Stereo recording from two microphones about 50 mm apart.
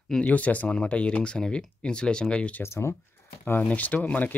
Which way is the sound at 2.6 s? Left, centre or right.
Left.